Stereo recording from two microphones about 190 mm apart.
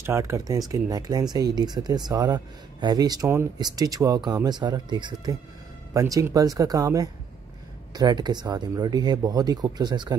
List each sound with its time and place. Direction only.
0.0 s speech: 15° right (ahead or behind)